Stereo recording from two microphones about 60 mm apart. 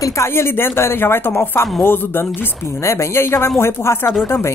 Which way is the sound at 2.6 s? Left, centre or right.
Left.